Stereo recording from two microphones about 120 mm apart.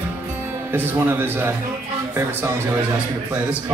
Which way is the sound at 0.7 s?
20° right (ahead or behind).